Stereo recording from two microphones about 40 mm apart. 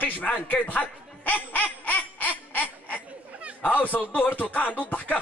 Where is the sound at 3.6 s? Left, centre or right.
Left.